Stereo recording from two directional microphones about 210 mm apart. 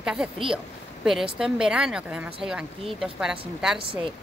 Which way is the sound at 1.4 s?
5° right (ahead or behind).